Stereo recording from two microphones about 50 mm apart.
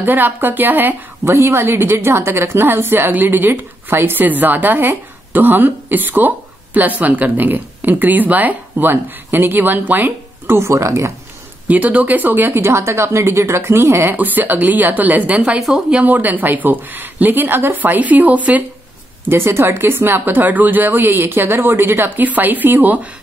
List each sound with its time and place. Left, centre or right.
0.0 s a woman's voice: right
1.2 s a woman's voice: right
10.5 s speech: right
11.6 s speech: right
14.1 s a woman's voice: right
19.2 s speech: right